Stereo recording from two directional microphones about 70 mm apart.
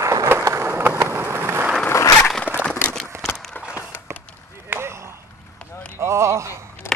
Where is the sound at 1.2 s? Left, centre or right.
Right.